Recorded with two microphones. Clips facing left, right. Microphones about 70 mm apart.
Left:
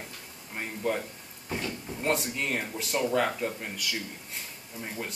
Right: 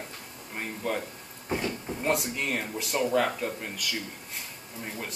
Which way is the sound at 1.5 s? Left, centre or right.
Centre.